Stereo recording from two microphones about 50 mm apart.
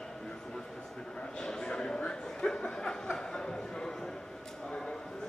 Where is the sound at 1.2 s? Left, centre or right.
Centre.